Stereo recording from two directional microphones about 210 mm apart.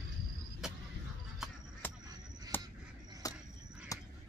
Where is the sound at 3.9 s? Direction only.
15° left (ahead or behind).